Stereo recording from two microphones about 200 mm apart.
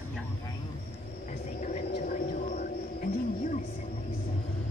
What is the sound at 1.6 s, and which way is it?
Whale vocalization, 35° left (ahead or behind).